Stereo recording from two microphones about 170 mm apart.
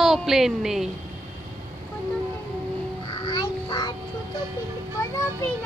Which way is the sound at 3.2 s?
25° left (ahead or behind).